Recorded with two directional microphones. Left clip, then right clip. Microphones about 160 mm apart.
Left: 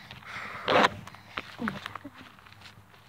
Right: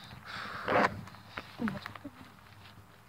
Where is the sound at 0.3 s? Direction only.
10° left (ahead or behind).